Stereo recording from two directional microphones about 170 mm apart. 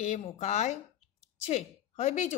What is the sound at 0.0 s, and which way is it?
A woman's voice, 45° left (ahead or behind).